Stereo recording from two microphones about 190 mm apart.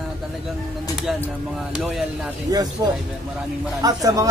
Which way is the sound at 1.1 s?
Centre (ahead or behind).